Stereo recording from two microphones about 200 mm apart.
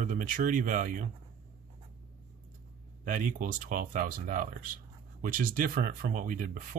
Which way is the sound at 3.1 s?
40° right (ahead or behind).